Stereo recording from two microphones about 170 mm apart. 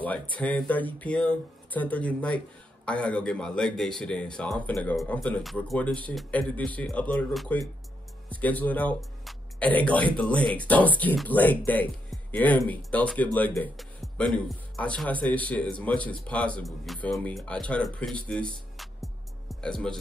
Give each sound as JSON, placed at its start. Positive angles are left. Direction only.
{"t": 0.0, "sound": "speech", "side_deg": 10}